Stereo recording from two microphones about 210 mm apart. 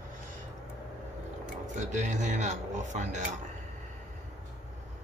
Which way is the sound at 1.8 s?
35° right (ahead or behind).